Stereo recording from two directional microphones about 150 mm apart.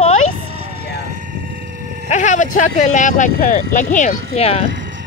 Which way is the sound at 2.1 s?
55° left (ahead or behind).